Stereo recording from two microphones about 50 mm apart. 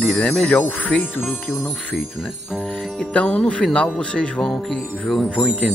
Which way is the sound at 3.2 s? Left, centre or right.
Centre.